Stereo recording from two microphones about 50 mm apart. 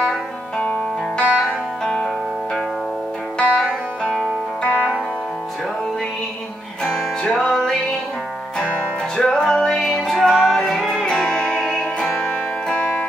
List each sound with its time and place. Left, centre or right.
0.6 s music: left
3.3 s music: centre
9.1 s music: centre